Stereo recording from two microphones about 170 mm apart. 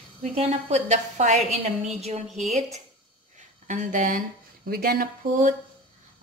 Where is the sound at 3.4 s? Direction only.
45° right (ahead or behind).